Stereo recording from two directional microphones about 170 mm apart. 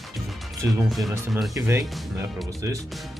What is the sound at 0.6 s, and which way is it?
Speech, 10° right (ahead or behind).